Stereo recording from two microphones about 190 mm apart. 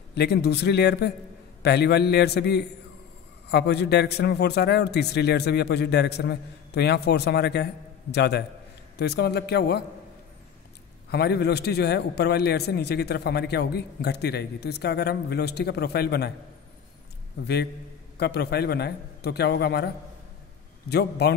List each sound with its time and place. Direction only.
0.1 s a man's voice: 60° left (ahead or behind)
11.1 s a man's voice: 60° left (ahead or behind)
18.1 s a man's voice: 60° left (ahead or behind)
20.9 s a man's voice: 60° left (ahead or behind)